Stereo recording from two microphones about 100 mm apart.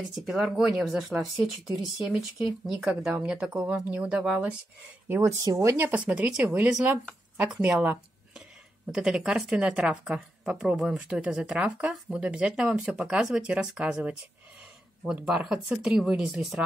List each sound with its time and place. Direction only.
0.1 s speech: 5° right (ahead or behind)
5.0 s speech: 25° right (ahead or behind)
5.4 s speech: 35° right (ahead or behind)
5.8 s speech: 20° right (ahead or behind)